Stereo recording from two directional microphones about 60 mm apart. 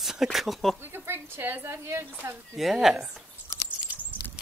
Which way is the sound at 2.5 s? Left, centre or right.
Centre.